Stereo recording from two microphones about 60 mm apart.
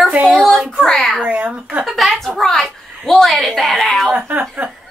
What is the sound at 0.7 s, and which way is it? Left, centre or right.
Speech, centre.